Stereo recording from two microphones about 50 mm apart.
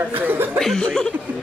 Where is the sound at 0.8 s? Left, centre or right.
Centre.